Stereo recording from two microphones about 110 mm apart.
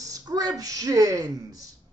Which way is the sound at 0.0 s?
35° right (ahead or behind).